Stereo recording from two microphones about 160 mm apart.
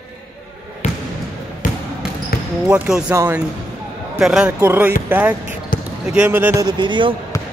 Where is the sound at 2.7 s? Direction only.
10° right (ahead or behind).